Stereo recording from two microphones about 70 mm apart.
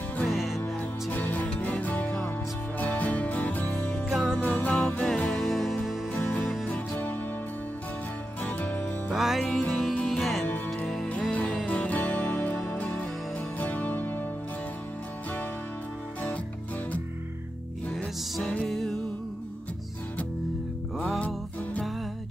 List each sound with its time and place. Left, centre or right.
0.3 s music: centre
1.1 s music: left
4.1 s music: centre
4.4 s music: left
4.7 s music: centre
6.6 s music: left
8.4 s music: left
9.1 s music: centre
9.6 s music: centre
11.1 s music: centre
18.4 s music: centre
18.7 s music: centre